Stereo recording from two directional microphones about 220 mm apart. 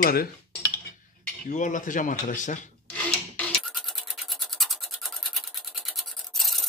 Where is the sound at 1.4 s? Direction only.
35° left (ahead or behind).